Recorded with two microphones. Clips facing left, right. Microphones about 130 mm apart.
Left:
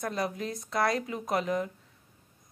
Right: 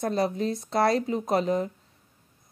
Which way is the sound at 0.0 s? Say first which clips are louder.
Right 6 dB; 30° right (ahead or behind).